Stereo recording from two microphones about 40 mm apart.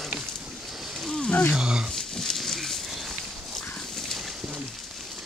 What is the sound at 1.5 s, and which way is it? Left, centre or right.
Speech, centre.